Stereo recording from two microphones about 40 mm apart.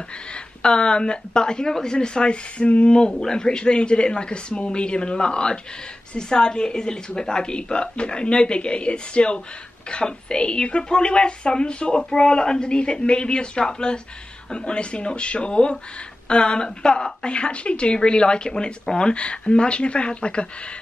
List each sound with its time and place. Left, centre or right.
0.3 s a woman's voice: left